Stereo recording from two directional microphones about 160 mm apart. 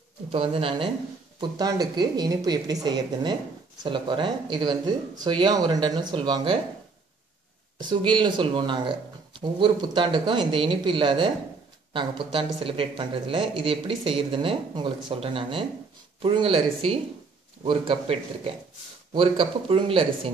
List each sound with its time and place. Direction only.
0.3 s speech: 35° right (ahead or behind)
7.8 s speech: 30° right (ahead or behind)
17.6 s speech: 35° right (ahead or behind)